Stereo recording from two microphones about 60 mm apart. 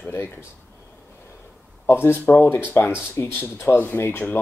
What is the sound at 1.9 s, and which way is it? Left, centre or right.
Speech, left.